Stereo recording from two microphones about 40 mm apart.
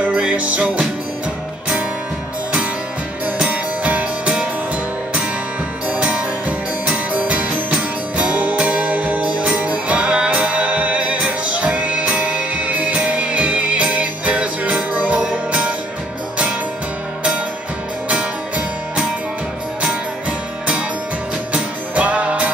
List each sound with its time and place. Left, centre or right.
0.0 s music: right
3.4 s music: right
5.9 s music: right
7.1 s music: right
19.8 s music: right